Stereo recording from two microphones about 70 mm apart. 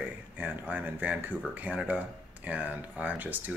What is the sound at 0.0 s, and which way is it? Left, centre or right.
Speech, right.